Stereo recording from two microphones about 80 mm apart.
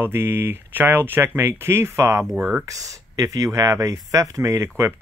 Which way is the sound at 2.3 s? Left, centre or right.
Centre.